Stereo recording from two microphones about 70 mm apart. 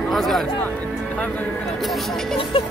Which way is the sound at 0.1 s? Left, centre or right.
Centre.